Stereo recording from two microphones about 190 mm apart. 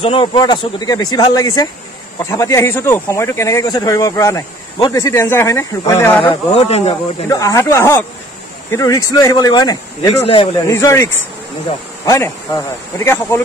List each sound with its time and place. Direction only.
0.0 s speech: 30° left (ahead or behind); by 6.3 s 10° left (ahead or behind)
6.5 s speech: 30° left (ahead or behind)
7.2 s speech: 15° left (ahead or behind)
10.2 s speech: 30° left (ahead or behind)
10.7 s speech: 15° left (ahead or behind)
12.1 s speech: 15° left (ahead or behind)